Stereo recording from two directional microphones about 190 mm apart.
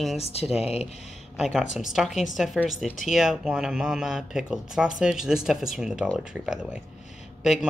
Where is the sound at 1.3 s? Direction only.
Centre (ahead or behind).